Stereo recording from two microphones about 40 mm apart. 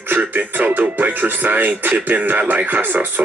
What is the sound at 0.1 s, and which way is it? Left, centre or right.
Speech, right.